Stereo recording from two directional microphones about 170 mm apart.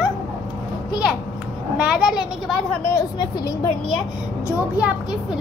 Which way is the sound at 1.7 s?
5° right (ahead or behind).